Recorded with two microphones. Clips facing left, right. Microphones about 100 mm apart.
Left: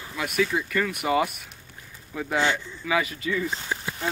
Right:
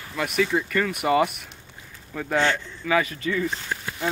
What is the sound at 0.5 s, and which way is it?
Speech, centre (ahead or behind).